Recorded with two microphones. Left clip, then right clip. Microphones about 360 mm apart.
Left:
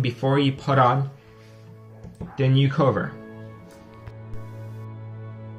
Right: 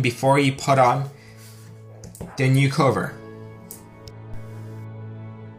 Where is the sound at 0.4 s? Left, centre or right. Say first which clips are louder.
Right 3 dB; right.